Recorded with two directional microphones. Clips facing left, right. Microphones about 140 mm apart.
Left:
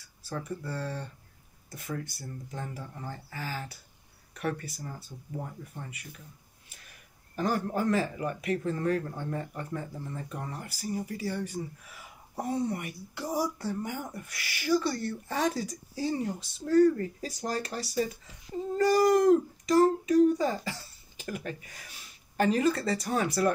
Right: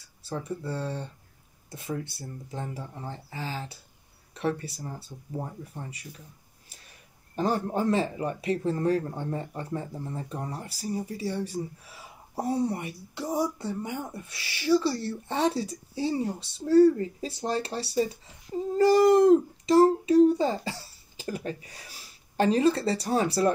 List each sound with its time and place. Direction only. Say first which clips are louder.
0.2 s speech: right 3 dB; 25° right (ahead or behind)
7.3 s a child's voice: right 2 dB; 25° right (ahead or behind)